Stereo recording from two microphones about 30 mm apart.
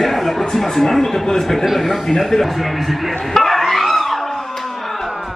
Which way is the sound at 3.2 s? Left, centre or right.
Centre.